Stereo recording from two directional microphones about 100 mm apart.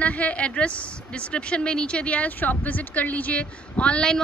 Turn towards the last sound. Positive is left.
turn(degrees=10)  # may be behind; listen again after turning